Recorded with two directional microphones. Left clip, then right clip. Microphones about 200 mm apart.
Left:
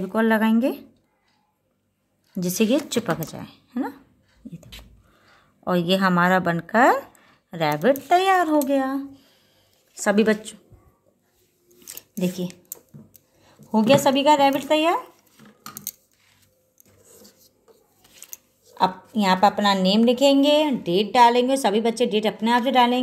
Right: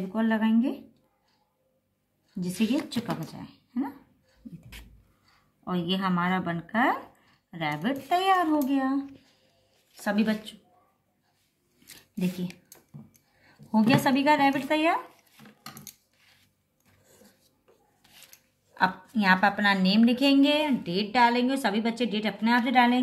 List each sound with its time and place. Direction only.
0.1 s speech: 50° left (ahead or behind)
2.4 s speech: 50° left (ahead or behind)
5.6 s speech: 45° left (ahead or behind)
10.0 s speech: 40° left (ahead or behind)
13.5 s a woman's voice: 20° left (ahead or behind)
18.8 s a woman's voice: 20° left (ahead or behind)